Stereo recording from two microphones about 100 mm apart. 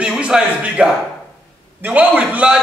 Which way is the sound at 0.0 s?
5° right (ahead or behind).